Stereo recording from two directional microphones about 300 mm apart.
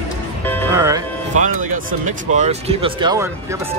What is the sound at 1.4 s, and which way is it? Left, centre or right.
Speech, right.